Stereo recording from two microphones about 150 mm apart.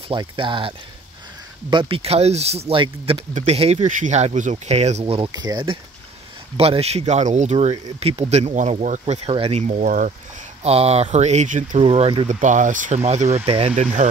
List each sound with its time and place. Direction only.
0.1 s speech: 35° right (ahead or behind)
5.3 s speech: 25° right (ahead or behind)
6.5 s speech: 40° right (ahead or behind); by 10.1 s 60° right (ahead or behind)
10.6 s speech: 40° right (ahead or behind)
11.8 s speech: 40° right (ahead or behind)
12.4 s speech: 55° right (ahead or behind); by 13.8 s 40° right (ahead or behind)